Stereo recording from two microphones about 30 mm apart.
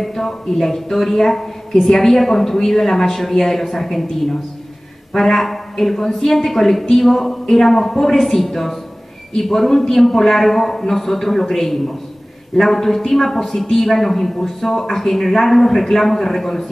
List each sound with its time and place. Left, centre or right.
0.0 s a woman's voice: centre
7.4 s a woman's voice: centre